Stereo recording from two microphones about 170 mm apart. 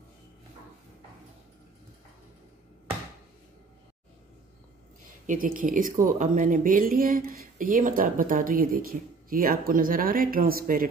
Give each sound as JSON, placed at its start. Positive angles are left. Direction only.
{"t": 5.2, "sound": "speech", "side_deg": -50}